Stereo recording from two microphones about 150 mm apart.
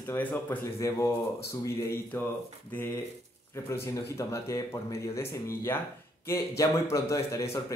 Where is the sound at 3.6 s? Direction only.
20° left (ahead or behind).